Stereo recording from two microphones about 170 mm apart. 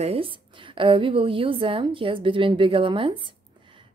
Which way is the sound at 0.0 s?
35° right (ahead or behind).